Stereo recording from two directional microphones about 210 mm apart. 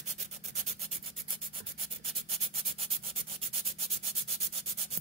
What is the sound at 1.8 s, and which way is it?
Rub, 25° right (ahead or behind).